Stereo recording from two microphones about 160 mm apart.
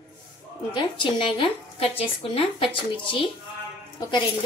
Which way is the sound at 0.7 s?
30° left (ahead or behind).